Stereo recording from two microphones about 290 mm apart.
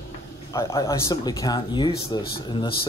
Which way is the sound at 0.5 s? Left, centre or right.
Centre.